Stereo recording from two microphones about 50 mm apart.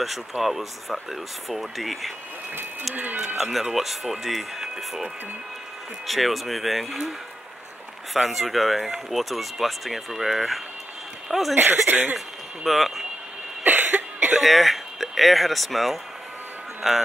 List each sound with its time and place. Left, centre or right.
0.0 s speech: centre
2.9 s speech: right
3.6 s speech: centre
6.0 s speech: centre
11.5 s speech: right
12.6 s speech: centre
13.7 s cough: right
14.4 s speech: centre